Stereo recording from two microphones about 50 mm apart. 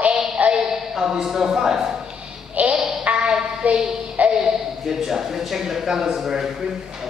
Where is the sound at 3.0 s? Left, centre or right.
Centre.